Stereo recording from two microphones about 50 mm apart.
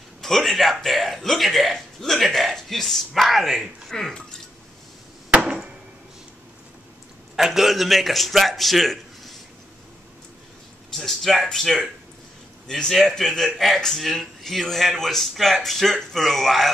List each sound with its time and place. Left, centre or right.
0.2 s speech: centre
5.3 s chop: centre
7.3 s a man's voice: centre
10.9 s a man's voice: centre